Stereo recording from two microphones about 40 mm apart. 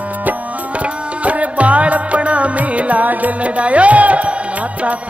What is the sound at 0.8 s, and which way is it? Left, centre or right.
Music, right.